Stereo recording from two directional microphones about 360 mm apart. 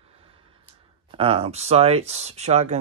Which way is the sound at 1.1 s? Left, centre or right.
Centre.